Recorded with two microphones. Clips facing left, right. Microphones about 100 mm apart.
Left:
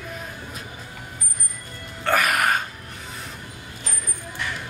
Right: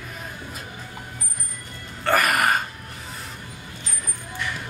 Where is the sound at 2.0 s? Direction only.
Centre (ahead or behind).